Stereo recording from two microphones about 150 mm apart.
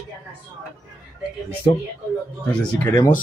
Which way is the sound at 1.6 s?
25° left (ahead or behind).